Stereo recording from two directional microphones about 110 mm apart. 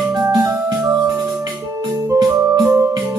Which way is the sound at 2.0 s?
35° right (ahead or behind).